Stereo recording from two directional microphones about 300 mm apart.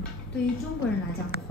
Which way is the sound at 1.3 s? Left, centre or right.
Left.